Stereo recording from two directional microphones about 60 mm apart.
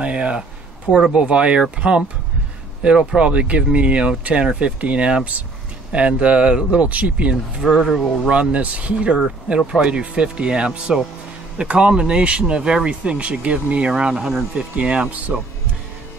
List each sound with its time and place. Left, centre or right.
0.0 s speech: centre
7.6 s speech: centre
8.3 s speech: centre